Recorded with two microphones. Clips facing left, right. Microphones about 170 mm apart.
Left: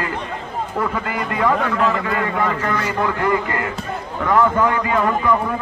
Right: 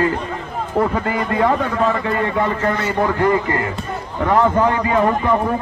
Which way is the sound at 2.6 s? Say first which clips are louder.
Right 3 dB; 30° right (ahead or behind).